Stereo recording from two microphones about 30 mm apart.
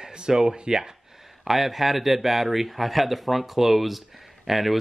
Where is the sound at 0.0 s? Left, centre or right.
Right.